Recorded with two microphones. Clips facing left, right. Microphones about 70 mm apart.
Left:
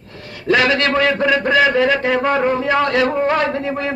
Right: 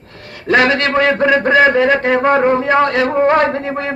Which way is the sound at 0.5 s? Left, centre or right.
Right.